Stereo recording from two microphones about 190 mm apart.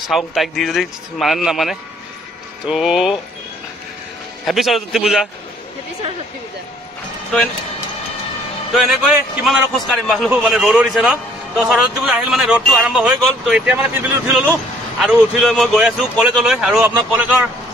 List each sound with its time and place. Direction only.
0.1 s a man's voice: centre (ahead or behind)
4.5 s a man's voice: centre (ahead or behind)
8.7 s a man's voice: 5° right (ahead or behind)